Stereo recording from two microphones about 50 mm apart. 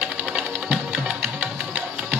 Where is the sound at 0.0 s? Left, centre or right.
Right.